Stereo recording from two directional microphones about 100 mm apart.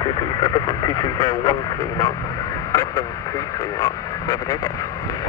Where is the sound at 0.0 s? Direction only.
45° left (ahead or behind).